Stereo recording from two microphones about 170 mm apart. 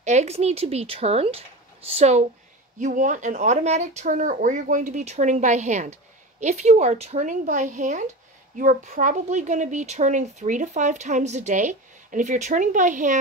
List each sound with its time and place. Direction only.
0.0 s a woman's voice: 40° right (ahead or behind)